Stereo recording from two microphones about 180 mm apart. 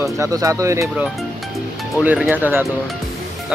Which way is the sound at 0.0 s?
15° right (ahead or behind).